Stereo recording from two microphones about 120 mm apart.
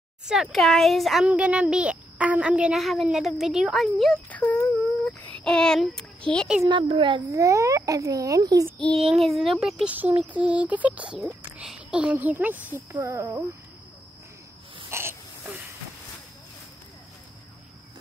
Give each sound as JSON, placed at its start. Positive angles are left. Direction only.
{"t": 0.3, "sound": "a woman's voice", "side_deg": 0}
{"t": 1.2, "sound": "a woman's voice", "side_deg": -10}
{"t": 4.3, "sound": "speech", "side_deg": 10}
{"t": 5.0, "sound": "a sound", "side_deg": 10}
{"t": 6.7, "sound": "a child's voice", "side_deg": -45}
{"t": 7.2, "sound": "speech", "side_deg": -25}
{"t": 8.7, "sound": "child singing", "side_deg": 10}
{"t": 9.0, "sound": "a woman's voice", "side_deg": 0}
{"t": 14.9, "sound": "a sound", "side_deg": -20}